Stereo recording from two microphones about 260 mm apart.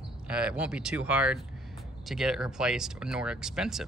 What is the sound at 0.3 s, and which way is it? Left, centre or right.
Speech, centre.